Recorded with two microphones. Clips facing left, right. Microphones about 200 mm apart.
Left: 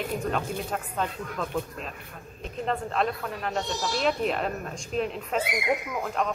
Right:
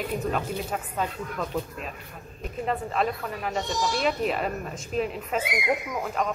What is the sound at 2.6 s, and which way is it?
Speech, 5° right (ahead or behind).